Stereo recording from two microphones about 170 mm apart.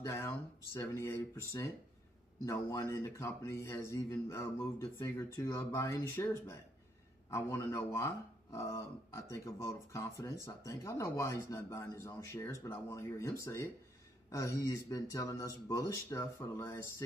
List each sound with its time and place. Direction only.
0.0 s speech: 15° left (ahead or behind)